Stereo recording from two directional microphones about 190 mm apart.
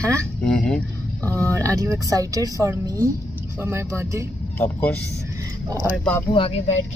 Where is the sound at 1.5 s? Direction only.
15° right (ahead or behind).